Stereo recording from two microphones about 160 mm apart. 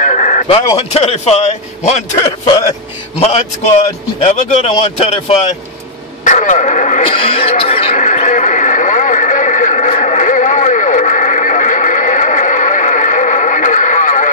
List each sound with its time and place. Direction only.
0.0 s a man's voice: 50° left (ahead or behind)
3.2 s speech: 45° left (ahead or behind)
4.7 s speech: 35° left (ahead or behind)
7.1 s a sound: 35° left (ahead or behind); by 14.3 s 50° left (ahead or behind)